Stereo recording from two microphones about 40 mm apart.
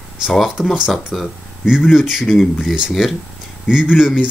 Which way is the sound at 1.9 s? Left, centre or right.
Centre.